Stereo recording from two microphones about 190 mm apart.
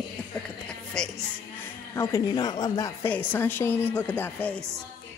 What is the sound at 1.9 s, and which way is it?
Speech, 20° left (ahead or behind).